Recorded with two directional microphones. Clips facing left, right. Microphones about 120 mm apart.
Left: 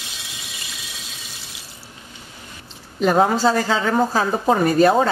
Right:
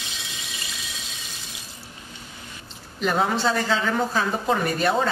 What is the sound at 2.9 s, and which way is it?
A woman's voice, 40° left (ahead or behind).